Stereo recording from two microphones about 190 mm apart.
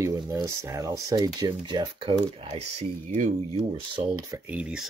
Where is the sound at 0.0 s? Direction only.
15° right (ahead or behind); by 3.4 s 40° right (ahead or behind).